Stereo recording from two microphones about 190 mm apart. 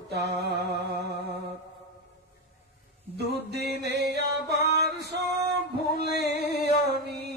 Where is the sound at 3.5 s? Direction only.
60° right (ahead or behind).